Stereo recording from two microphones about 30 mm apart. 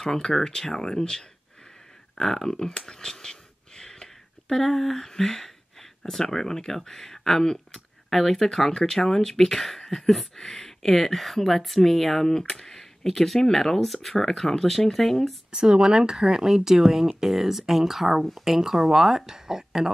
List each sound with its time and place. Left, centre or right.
0.0 s speech: centre
2.2 s a sound: centre
4.6 s speech: centre
15.5 s speech: right